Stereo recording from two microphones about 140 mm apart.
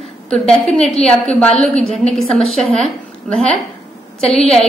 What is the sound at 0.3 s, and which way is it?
A woman's voice, 5° left (ahead or behind).